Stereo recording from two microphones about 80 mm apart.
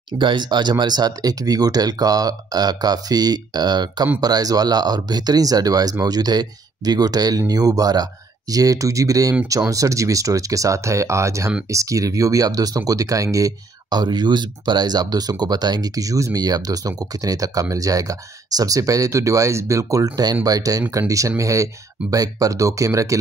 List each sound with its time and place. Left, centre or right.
0.2 s speech: right